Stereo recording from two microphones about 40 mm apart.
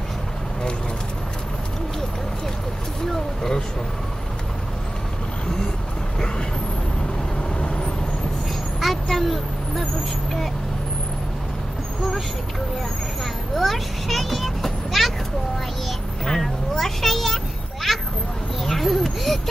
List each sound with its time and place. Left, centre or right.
3.1 s speech: centre
7.6 s vehicle: left
8.8 s vehicle: centre
13.2 s a child's voice: centre
16.3 s speech: centre